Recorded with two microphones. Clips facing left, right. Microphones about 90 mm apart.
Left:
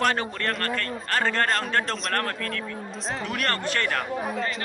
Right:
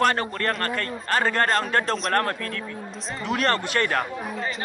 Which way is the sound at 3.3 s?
20° right (ahead or behind).